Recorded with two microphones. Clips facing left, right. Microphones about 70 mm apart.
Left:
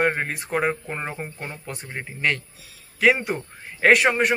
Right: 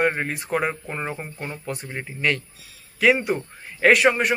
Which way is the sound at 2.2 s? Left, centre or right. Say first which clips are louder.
Right 1 dB; left.